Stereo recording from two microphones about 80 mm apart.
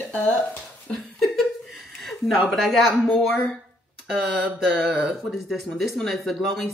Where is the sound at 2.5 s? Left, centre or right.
Centre.